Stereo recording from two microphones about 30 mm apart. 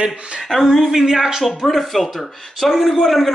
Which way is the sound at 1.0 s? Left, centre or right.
Centre.